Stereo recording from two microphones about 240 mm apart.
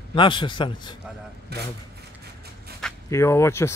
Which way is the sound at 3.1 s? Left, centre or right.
Centre.